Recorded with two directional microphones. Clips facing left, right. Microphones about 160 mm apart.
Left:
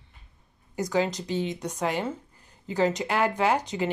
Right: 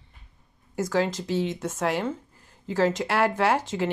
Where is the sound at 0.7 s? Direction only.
Centre (ahead or behind).